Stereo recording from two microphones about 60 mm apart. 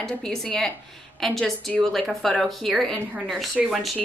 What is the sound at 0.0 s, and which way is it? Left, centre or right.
A woman's voice, centre.